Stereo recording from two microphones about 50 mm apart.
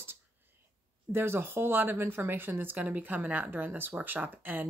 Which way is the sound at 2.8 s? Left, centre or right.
Right.